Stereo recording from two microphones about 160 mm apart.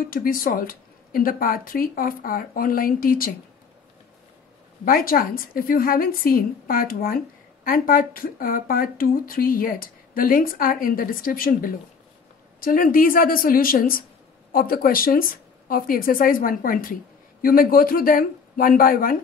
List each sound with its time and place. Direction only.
0.1 s a woman's voice: 60° left (ahead or behind)
4.8 s a woman's voice: 65° left (ahead or behind)